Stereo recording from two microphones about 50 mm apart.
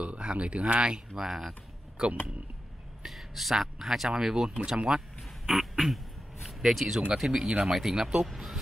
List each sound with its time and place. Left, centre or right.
0.0 s speech: right
5.6 s a sound: centre
6.4 s speech: centre
7.2 s speech: centre
7.6 s speech: centre